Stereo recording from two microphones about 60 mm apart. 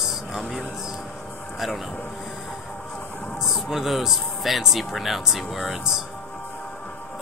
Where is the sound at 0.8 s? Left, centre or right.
Centre.